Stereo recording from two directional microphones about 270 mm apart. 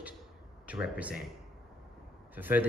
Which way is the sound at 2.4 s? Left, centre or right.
Centre.